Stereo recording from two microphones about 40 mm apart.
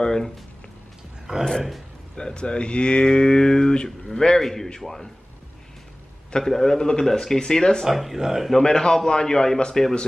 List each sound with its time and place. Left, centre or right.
1.3 s speech: centre
2.1 s speech: left
6.3 s speech: centre
7.8 s speech: centre
8.6 s speech: centre